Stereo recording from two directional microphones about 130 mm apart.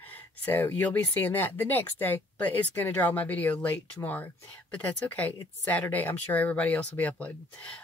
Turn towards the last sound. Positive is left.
turn(degrees=10)  # may be behind; listen again after turning